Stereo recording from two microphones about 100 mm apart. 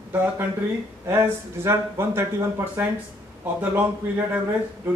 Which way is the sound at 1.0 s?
25° right (ahead or behind).